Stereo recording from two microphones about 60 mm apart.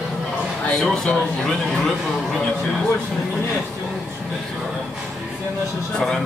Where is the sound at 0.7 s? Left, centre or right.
Centre.